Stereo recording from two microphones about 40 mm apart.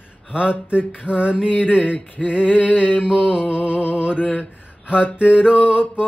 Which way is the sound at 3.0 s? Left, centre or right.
Right.